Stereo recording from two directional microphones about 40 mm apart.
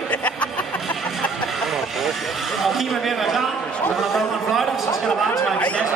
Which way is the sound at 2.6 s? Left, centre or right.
Centre.